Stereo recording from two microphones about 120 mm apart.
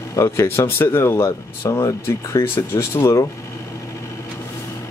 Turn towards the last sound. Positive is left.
turn(degrees=25)  # may be behind; listen again after turning